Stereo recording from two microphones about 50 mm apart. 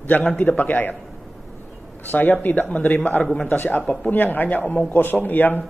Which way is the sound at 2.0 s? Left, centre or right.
Left.